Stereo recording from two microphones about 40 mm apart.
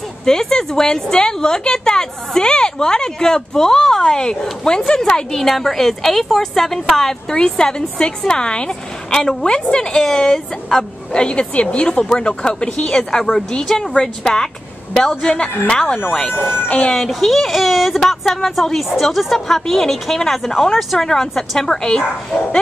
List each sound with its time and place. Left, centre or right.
0.2 s a woman's voice: centre
7.3 s a woman's voice: left
13.1 s a woman's voice: centre
16.3 s speech: left
16.9 s a woman's voice: centre